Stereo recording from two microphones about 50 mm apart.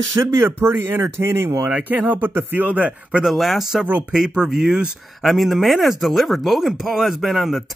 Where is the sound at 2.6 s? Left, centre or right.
Right.